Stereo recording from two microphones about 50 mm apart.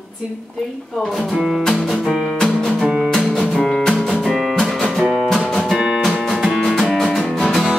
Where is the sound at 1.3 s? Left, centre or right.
Centre.